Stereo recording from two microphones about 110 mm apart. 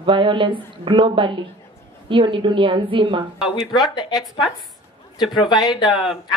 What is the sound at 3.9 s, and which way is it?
Speech, 40° left (ahead or behind).